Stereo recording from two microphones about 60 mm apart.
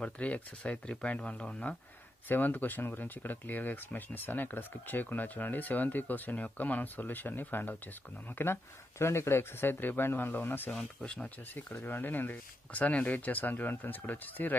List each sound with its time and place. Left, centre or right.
0.0 s speech: left
2.2 s speech: left
10.7 s speech: centre
11.1 s speech: centre
11.8 s speech: left